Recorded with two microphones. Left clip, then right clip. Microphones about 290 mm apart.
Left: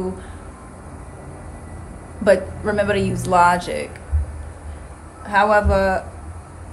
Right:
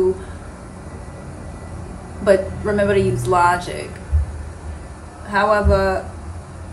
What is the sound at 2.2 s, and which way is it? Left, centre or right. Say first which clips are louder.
A man's voice: right 1 dB; left.